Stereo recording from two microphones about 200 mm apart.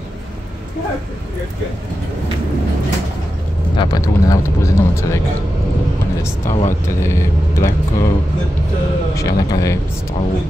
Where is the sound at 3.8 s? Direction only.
20° left (ahead or behind).